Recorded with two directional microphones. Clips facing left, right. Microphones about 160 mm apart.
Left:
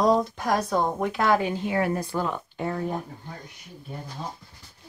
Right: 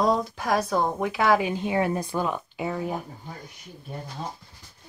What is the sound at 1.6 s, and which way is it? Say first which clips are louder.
A woman's voice: right 1 dB; 20° right (ahead or behind).